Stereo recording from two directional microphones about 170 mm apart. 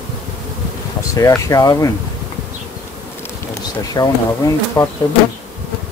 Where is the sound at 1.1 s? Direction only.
20° left (ahead or behind).